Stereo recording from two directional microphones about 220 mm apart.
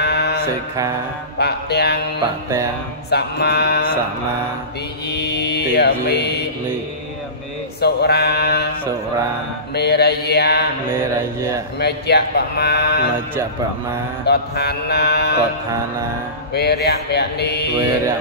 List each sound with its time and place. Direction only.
0.0 s mantra: 50° left (ahead or behind)
1.4 s a man's voice: 50° left (ahead or behind)
3.1 s a man's voice: 45° left (ahead or behind)
5.1 s mantra: 50° left (ahead or behind)
7.8 s a man's voice: 45° left (ahead or behind)
9.8 s a man's voice: 50° left (ahead or behind)
11.1 s speech: 15° right (ahead or behind)
11.8 s a man's voice: 50° left (ahead or behind)
14.2 s a man's voice: 50° left (ahead or behind)
16.5 s a man's voice: 50° left (ahead or behind)